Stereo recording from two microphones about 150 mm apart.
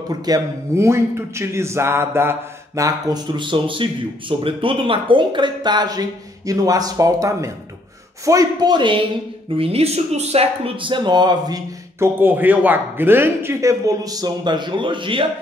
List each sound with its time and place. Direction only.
0.1 s a man's voice: 25° right (ahead or behind)
12.2 s a man's voice: 10° right (ahead or behind); by 15.2 s 35° right (ahead or behind)